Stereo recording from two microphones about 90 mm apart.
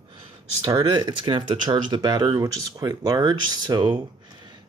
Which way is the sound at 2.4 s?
40° right (ahead or behind).